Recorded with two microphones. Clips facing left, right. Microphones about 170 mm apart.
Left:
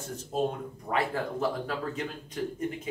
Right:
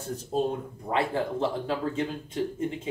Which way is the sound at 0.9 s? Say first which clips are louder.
Right 3 dB; 25° right (ahead or behind).